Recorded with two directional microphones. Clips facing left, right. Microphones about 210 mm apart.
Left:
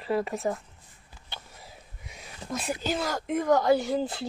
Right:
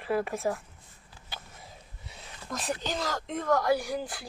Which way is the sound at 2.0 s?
10° left (ahead or behind).